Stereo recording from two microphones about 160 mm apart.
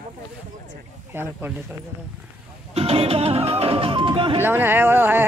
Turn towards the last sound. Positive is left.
turn(degrees=-15)  # may be behind; listen again after turning